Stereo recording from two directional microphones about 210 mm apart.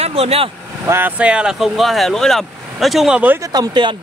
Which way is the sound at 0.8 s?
10° right (ahead or behind).